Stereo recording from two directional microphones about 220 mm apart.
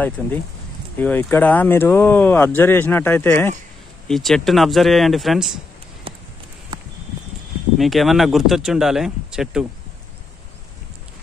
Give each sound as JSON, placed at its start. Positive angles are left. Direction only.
{"t": 0.2, "sound": "speech", "side_deg": 5}
{"t": 6.1, "sound": "a sound", "side_deg": -25}
{"t": 7.7, "sound": "speech", "side_deg": 0}